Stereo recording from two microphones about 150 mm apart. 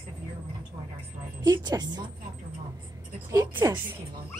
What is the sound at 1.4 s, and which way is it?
Speech, 25° right (ahead or behind).